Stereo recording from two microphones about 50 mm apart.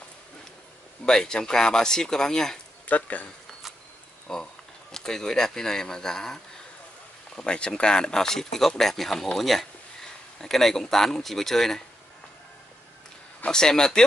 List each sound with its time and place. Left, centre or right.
1.0 s speech: centre
2.9 s speech: left
4.3 s speech: centre
13.5 s speech: centre